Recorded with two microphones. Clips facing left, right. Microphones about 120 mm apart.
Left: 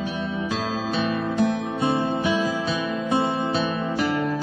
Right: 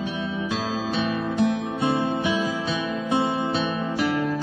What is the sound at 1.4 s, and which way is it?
Music, centre (ahead or behind).